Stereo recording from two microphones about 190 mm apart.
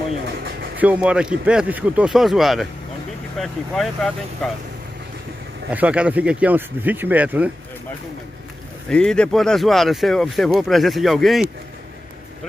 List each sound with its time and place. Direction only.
0.2 s a sound: 60° right (ahead or behind)
0.7 s speech: 5° right (ahead or behind)
5.7 s speech: 5° right (ahead or behind)
8.8 s speech: 5° left (ahead or behind)